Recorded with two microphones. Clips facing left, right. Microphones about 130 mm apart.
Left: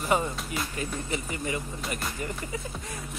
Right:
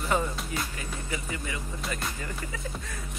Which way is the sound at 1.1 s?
25° left (ahead or behind).